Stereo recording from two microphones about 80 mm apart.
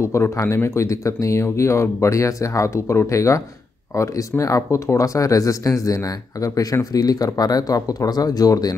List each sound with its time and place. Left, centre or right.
0.0 s speech: left